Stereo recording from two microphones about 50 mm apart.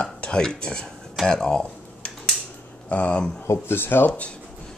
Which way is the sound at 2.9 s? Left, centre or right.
Left.